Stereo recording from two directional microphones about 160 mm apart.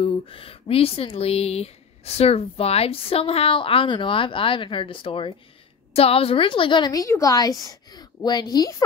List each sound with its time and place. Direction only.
0.0 s a woman's voice: 35° left (ahead or behind)